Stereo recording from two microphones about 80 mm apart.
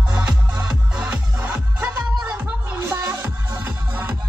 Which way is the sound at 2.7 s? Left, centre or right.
Right.